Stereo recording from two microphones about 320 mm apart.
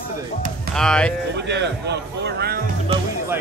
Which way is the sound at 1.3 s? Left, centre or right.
Right.